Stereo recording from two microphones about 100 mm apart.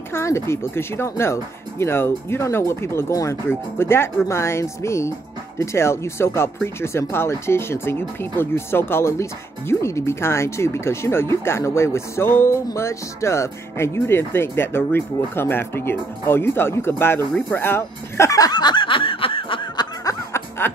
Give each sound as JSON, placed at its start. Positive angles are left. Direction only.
{"t": 0.1, "sound": "speech", "side_deg": 25}
{"t": 17.5, "sound": "snicker", "side_deg": 20}
{"t": 20.1, "sound": "music", "side_deg": 25}